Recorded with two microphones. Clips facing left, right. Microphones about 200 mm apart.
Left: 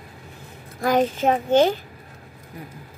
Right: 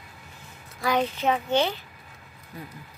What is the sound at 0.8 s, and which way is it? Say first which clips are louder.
A child's voice: left 5 dB; 50° left (ahead or behind).